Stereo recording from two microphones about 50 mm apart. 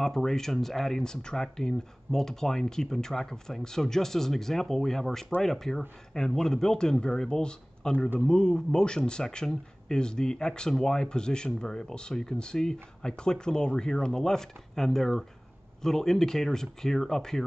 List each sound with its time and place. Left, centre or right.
0.0 s speech: centre